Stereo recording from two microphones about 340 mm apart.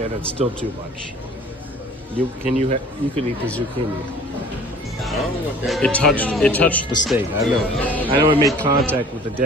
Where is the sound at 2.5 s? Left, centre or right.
Centre.